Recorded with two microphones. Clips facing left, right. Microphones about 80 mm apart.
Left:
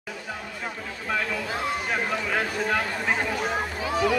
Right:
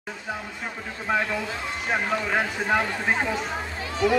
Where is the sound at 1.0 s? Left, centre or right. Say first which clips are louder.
Right 3 dB; centre.